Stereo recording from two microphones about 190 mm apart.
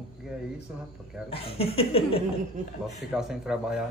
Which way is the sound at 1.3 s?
30° left (ahead or behind).